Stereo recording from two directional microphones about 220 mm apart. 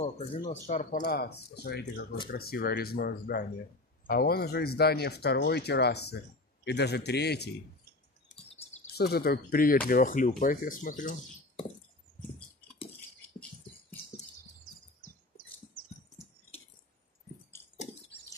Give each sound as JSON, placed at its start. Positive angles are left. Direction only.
{"t": 0.0, "sound": "speech", "side_deg": 25}
{"t": 8.9, "sound": "speech", "side_deg": 45}